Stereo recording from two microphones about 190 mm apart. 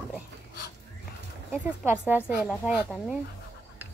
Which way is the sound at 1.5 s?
10° right (ahead or behind).